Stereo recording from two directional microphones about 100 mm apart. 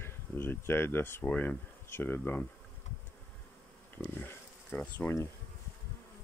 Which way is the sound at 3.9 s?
20° left (ahead or behind).